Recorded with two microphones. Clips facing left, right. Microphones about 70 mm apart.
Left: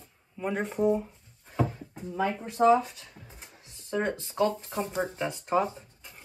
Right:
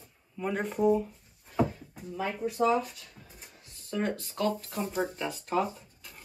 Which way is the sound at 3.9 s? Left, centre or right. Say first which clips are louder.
Left 2 dB; centre.